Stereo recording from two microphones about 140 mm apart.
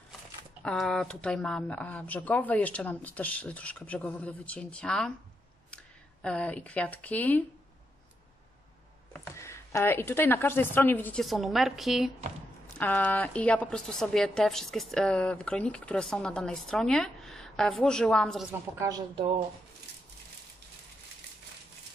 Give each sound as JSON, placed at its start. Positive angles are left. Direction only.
{"t": 0.7, "sound": "speech", "side_deg": 5}
{"t": 6.2, "sound": "speech", "side_deg": 10}
{"t": 9.3, "sound": "speech", "side_deg": 20}
{"t": 11.2, "sound": "a woman's voice", "side_deg": 0}
{"t": 12.7, "sound": "a woman's voice", "side_deg": 10}
{"t": 18.5, "sound": "a woman's voice", "side_deg": -25}